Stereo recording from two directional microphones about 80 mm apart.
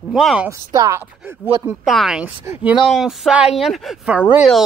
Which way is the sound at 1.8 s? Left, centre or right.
Centre.